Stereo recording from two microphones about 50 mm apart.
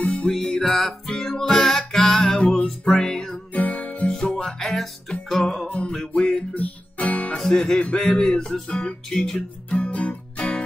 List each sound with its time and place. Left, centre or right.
0.0 s music: left
0.5 s music: centre
3.5 s music: left
4.1 s music: centre
5.7 s music: left
6.5 s guitar: left
7.3 s music: centre
9.8 s music: left